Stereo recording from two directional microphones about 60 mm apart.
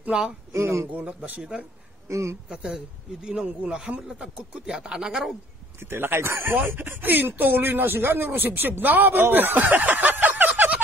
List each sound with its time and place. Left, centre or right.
0.1 s speech: centre
0.5 s speech: right
0.9 s speech: right
2.0 s speech: right
2.5 s speech: centre
5.8 s speech: right